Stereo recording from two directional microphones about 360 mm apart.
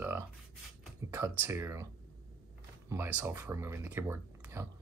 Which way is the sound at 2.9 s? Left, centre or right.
Centre.